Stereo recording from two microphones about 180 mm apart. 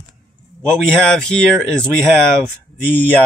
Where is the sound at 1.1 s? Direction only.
5° left (ahead or behind).